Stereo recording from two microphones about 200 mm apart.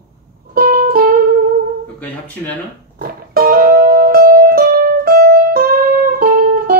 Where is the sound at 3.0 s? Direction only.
45° right (ahead or behind).